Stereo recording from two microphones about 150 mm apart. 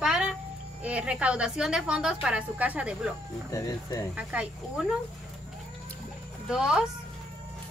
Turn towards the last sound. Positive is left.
turn(degrees=-5)  # may be behind; listen again after turning